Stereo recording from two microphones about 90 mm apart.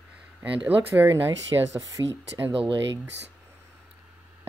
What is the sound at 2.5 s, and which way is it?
Speech, 90° right.